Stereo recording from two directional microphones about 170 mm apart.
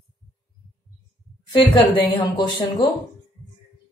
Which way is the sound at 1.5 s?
30° left (ahead or behind).